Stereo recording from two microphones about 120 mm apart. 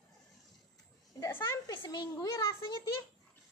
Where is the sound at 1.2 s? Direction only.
20° left (ahead or behind).